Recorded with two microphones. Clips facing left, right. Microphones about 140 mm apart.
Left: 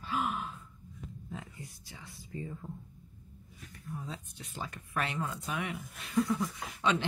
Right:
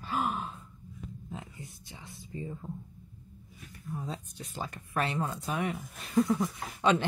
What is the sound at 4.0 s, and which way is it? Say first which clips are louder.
Speech: right 6 dB; 35° right (ahead or behind).